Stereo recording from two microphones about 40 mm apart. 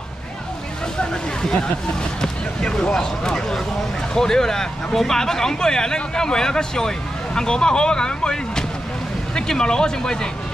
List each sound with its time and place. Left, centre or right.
1.4 s speech: centre